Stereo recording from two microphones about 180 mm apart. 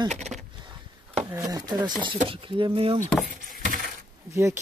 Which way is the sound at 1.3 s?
20° right (ahead or behind).